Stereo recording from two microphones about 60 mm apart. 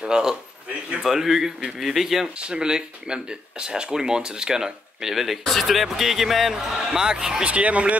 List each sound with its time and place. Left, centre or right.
0.0 s speech: centre
2.3 s speech: centre